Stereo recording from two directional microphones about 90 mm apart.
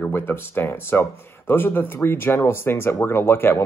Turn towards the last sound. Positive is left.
turn(degrees=25)  # may be behind; listen again after turning